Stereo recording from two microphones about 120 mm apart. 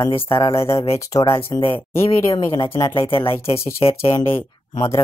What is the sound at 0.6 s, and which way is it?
Speech, 25° left (ahead or behind).